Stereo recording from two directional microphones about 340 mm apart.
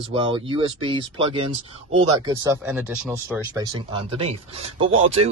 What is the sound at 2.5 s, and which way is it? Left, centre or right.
Speech, centre.